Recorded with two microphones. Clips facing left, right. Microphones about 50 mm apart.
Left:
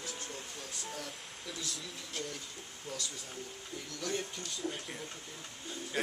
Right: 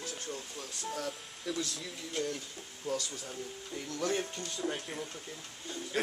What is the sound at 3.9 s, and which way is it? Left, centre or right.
Speech, right.